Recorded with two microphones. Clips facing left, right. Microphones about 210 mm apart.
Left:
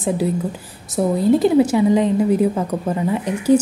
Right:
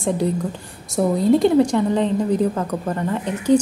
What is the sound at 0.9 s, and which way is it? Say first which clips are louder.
A woman's voice: left 1 dB; centre (ahead or behind).